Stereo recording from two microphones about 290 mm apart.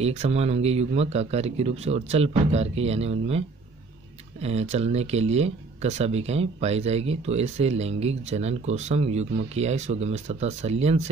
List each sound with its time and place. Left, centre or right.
0.0 s speech: right